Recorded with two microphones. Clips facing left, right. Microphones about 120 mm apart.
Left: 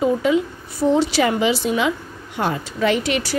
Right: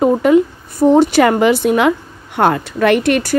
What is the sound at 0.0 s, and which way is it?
A woman's voice, 55° right (ahead or behind).